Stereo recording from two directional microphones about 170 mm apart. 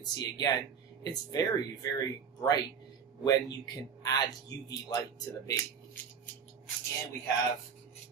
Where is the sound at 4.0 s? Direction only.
20° left (ahead or behind).